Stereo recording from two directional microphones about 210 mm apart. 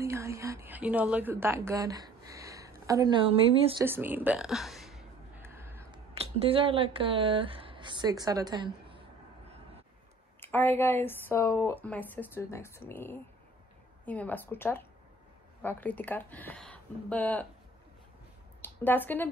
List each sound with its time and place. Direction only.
0.0 s a woman's voice: 15° right (ahead or behind)
3.8 s speech: 10° right (ahead or behind)
5.4 s a sound: 10° right (ahead or behind)
5.9 s speech: 25° right (ahead or behind)
10.4 s speech: 10° left (ahead or behind)
18.6 s speech: 10° left (ahead or behind)